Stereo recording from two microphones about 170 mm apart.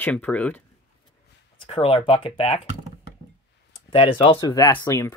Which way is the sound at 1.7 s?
35° left (ahead or behind).